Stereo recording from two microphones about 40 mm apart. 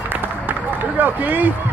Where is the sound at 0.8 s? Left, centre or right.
Right.